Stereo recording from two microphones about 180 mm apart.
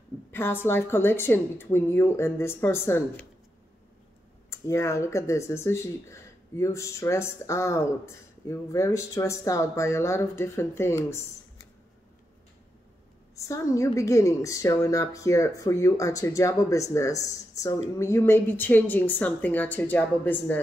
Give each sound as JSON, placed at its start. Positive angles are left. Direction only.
{"t": 0.3, "sound": "a sound", "side_deg": 10}
{"t": 0.7, "sound": "speech", "side_deg": 10}
{"t": 4.5, "sound": "speech", "side_deg": 15}
{"t": 13.5, "sound": "speech", "side_deg": 15}